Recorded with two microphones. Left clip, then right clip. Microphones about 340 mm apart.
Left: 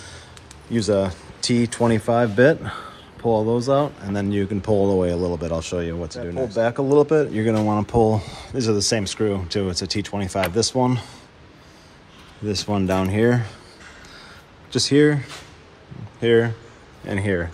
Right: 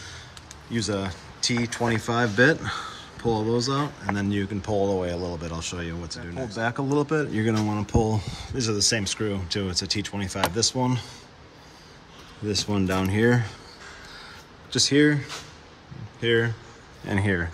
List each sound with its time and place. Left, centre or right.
0.7 s speech: centre
5.1 s speech: left
5.4 s speech: centre
12.4 s speech: centre
14.7 s speech: centre